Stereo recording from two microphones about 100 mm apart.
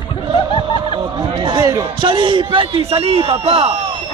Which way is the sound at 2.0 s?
55° right (ahead or behind).